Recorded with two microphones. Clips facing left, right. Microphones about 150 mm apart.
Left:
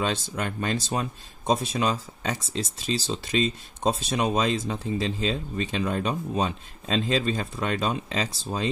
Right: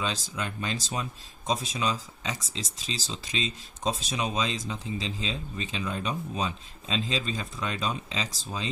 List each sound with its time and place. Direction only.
0.0 s speech: 55° left (ahead or behind)